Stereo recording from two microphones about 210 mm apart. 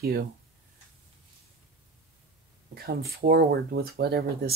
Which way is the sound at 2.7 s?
45° right (ahead or behind).